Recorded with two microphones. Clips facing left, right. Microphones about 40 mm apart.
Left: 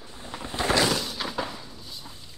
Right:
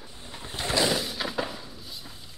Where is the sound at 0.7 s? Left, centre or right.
Centre.